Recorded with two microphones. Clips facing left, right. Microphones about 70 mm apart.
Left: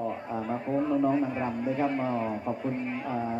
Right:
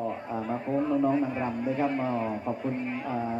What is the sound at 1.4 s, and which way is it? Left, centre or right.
Speech, centre.